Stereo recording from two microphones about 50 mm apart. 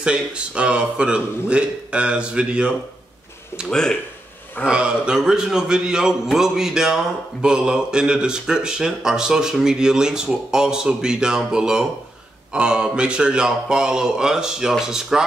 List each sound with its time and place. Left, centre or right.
0.0 s speech: centre
3.7 s speech: centre
4.6 s speech: centre